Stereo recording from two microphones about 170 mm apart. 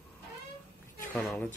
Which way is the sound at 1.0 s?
10° left (ahead or behind).